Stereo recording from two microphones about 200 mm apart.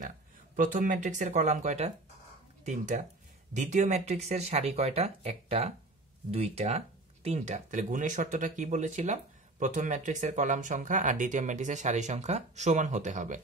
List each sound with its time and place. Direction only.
0.6 s speech: 40° right (ahead or behind)